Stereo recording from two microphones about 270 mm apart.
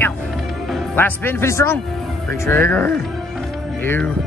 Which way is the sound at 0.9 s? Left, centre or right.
Centre.